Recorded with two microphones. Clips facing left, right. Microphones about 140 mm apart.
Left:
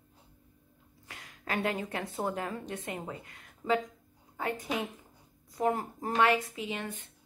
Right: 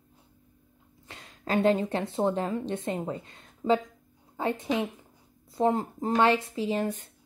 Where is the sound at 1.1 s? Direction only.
25° right (ahead or behind).